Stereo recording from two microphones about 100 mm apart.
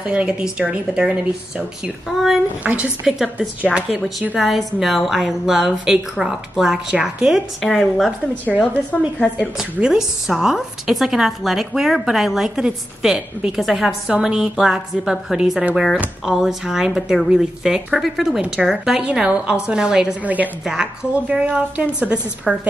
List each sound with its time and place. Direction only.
0.0 s a woman's voice: 10° right (ahead or behind)
2.6 s a woman's voice: 15° right (ahead or behind); by 8.1 s centre (ahead or behind)
9.4 s a woman's voice: 5° right (ahead or behind)
22.5 s a woman's voice: centre (ahead or behind)